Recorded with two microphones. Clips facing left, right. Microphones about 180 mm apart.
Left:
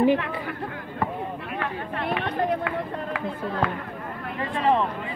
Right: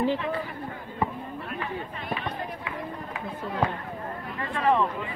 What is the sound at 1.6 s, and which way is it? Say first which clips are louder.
Run: left 8 dB; 65° left (ahead or behind).